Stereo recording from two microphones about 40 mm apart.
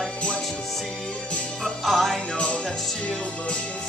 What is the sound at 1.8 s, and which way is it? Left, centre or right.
Music, centre.